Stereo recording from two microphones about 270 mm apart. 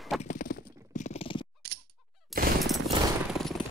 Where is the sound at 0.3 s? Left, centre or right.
Left.